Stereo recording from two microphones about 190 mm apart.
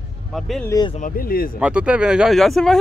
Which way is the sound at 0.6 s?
20° left (ahead or behind).